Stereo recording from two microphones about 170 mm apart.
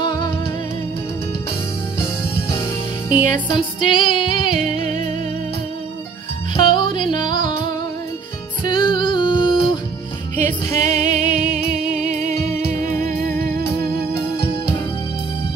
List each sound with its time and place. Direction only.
0.0 s music: 25° left (ahead or behind)
3.1 s music: 50° right (ahead or behind)
3.4 s music: 30° left (ahead or behind)
6.5 s music: 30° left (ahead or behind)
8.6 s music: 25° left (ahead or behind)
10.3 s music: 45° right (ahead or behind)
11.5 s music: 5° right (ahead or behind)
12.0 s music: 45° right (ahead or behind)